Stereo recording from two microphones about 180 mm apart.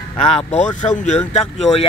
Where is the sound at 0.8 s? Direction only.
40° left (ahead or behind).